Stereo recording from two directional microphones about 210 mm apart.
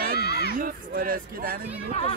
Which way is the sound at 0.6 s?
40° right (ahead or behind).